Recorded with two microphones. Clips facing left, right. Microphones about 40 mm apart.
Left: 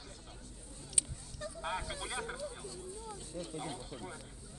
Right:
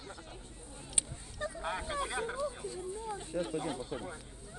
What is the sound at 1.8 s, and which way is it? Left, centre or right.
Speech, right.